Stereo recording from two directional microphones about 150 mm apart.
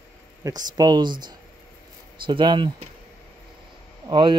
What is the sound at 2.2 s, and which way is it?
Speech, 30° right (ahead or behind).